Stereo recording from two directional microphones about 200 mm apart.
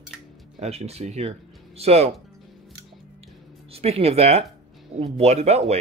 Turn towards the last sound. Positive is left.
turn(degrees=-35)  # may be behind; listen again after turning